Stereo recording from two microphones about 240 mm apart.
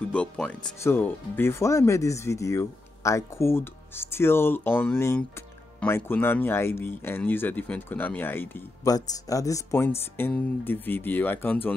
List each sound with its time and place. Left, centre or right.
0.1 s speech: centre